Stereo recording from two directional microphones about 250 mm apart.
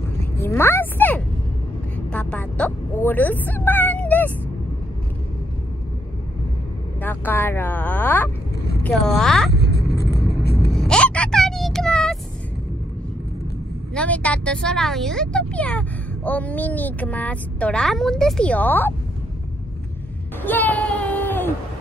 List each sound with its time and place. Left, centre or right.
0.5 s a woman's voice: centre
2.1 s a sound: centre
7.0 s speech: centre
9.5 s vehicle: left
10.7 s vehicle: centre
13.9 s speech: centre
20.4 s a sound: centre